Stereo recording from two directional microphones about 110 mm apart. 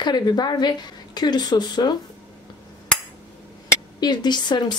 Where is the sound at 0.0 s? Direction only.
40° left (ahead or behind).